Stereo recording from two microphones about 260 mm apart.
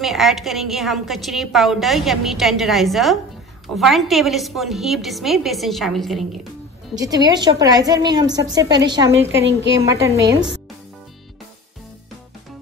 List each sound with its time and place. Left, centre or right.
0.0 s a woman's voice: centre
7.0 s a woman's voice: centre